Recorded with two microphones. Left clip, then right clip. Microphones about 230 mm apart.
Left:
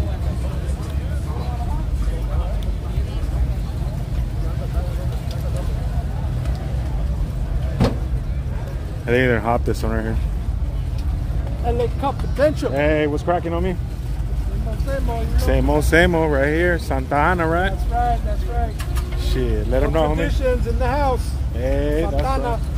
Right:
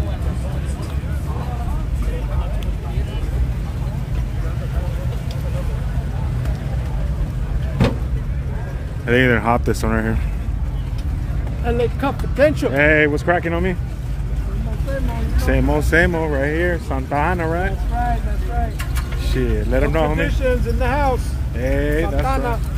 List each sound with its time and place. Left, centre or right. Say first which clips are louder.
9.0 s speech: right 2 dB; centre
11.6 s speech: right 2 dB; right
12.4 s speech: right 3 dB; right
12.7 s speech: right 4 dB; centre
15.4 s speech: even; centre
19.3 s speech: right 1 dB; centre
20.2 s speech: right 1 dB; centre